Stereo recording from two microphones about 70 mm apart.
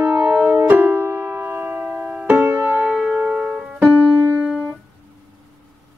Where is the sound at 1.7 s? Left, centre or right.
Centre.